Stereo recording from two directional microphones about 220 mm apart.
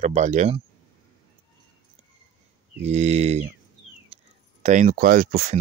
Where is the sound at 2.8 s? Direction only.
30° right (ahead or behind).